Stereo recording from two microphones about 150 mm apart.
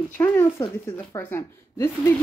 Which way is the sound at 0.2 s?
15° left (ahead or behind).